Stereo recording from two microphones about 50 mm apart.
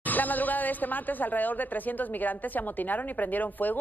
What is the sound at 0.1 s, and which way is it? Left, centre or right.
A woman's voice, left.